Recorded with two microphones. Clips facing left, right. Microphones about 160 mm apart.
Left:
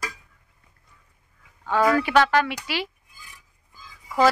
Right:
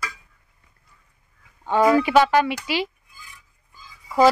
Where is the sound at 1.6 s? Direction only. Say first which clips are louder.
Right 3 dB; 15° right (ahead or behind).